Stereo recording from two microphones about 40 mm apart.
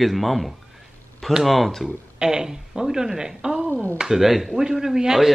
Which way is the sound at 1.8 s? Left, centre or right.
Centre.